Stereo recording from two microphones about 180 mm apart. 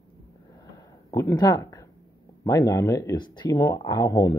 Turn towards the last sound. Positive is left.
turn(degrees=20)  # may be behind; listen again after turning